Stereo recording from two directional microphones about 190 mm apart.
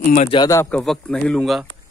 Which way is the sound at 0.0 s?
45° left (ahead or behind).